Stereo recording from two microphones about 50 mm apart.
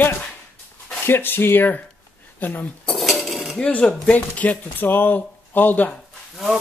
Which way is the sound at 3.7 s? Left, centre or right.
Left.